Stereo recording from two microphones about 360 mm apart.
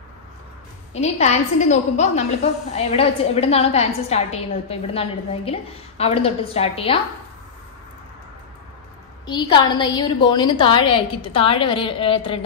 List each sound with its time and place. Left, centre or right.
1.0 s a woman's voice: centre
9.2 s a woman's voice: centre